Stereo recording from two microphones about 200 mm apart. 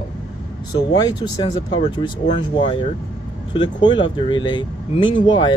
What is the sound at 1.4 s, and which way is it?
Speech, 25° left (ahead or behind).